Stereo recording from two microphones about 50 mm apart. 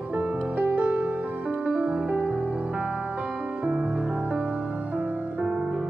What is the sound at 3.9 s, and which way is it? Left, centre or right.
Music, centre.